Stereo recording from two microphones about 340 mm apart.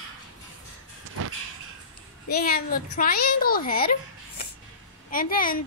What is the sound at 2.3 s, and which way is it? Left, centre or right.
A child's voice, left.